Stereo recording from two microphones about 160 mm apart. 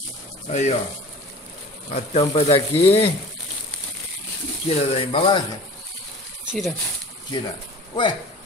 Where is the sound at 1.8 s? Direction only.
40° left (ahead or behind).